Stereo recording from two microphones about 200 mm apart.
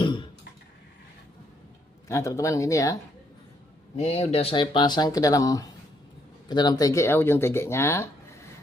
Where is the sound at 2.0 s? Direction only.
15° left (ahead or behind).